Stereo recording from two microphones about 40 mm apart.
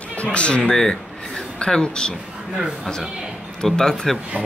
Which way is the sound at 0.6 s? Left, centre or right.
Centre.